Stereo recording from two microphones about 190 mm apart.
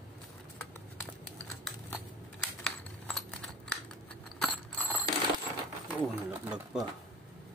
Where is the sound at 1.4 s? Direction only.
5° left (ahead or behind).